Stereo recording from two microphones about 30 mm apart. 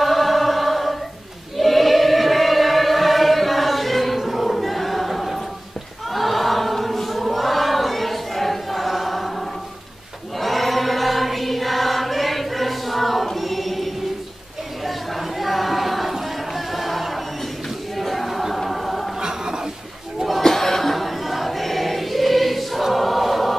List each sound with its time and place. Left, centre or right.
0.0 s choir: centre
1.6 s chant: centre
6.0 s choir: centre
10.4 s choir: centre
14.8 s a sound: centre
17.9 s choir: centre
19.1 s a sound: right
20.4 s choir: centre